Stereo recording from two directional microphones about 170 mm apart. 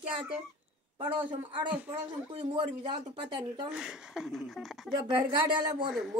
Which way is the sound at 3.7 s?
5° right (ahead or behind).